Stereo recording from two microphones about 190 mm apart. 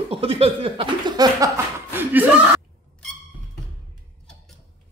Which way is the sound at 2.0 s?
10° right (ahead or behind).